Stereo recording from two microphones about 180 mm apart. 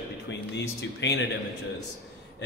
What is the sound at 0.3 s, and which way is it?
Speech, 70° left (ahead or behind).